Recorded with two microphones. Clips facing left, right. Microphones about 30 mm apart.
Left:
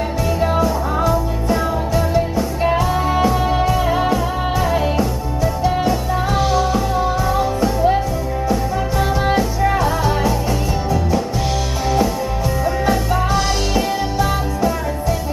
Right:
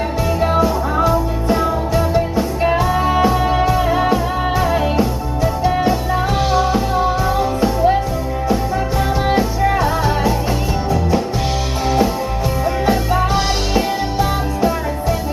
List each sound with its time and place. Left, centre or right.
0.4 s music: centre
12.8 s music: centre